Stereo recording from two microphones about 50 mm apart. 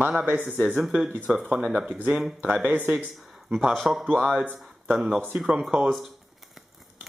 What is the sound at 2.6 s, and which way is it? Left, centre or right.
Speech, right.